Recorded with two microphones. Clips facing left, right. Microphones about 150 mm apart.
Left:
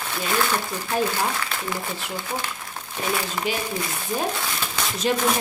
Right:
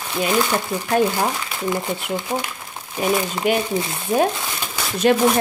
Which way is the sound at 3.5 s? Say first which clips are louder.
Right 9 dB; 55° right (ahead or behind).